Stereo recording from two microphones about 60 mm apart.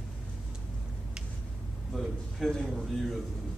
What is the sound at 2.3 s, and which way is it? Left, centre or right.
Speech, centre.